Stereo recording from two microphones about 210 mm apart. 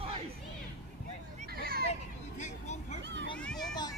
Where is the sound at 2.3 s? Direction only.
35° left (ahead or behind).